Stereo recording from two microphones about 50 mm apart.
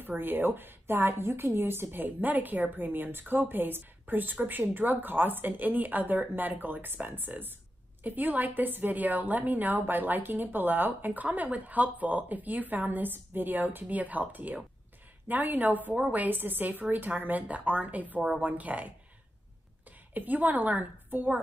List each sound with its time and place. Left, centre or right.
0.0 s a woman's voice: right
20.2 s a woman's voice: right